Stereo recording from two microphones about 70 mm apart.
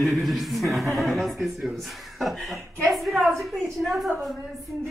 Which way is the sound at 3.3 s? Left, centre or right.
Centre.